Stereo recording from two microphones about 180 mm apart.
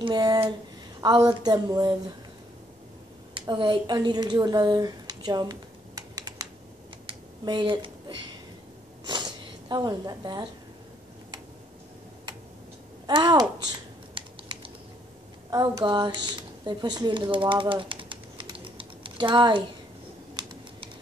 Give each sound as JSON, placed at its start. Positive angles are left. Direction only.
{"t": 0.0, "sound": "a sound", "side_deg": -20}
{"t": 1.0, "sound": "a woman's voice", "side_deg": -20}
{"t": 3.3, "sound": "speech", "side_deg": -25}
{"t": 7.1, "sound": "a sound", "side_deg": -25}
{"t": 9.7, "sound": "a woman's voice", "side_deg": -25}
{"t": 13.0, "sound": "speech", "side_deg": -25}
{"t": 14.1, "sound": "typing", "side_deg": -30}
{"t": 15.5, "sound": "speech", "side_deg": -20}